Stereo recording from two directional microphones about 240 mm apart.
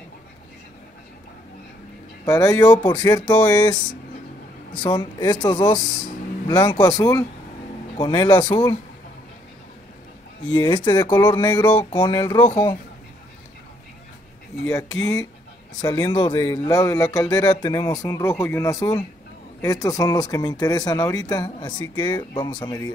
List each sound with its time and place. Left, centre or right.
2.2 s speech: centre
4.8 s speech: centre
10.5 s speech: centre
14.7 s speech: centre